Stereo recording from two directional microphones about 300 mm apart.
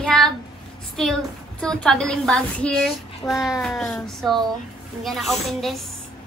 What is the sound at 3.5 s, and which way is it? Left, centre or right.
A child's voice, centre.